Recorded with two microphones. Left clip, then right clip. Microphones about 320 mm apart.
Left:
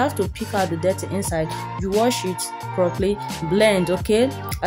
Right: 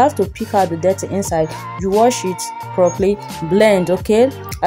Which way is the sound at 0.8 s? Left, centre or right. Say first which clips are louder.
Right 6 dB; left.